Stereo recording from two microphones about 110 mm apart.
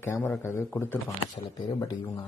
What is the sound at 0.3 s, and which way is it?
A man's voice, 20° left (ahead or behind).